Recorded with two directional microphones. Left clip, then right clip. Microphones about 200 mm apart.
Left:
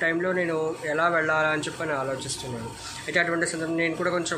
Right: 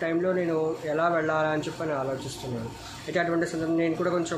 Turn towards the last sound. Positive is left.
turn(degrees=-15)  # may be behind; listen again after turning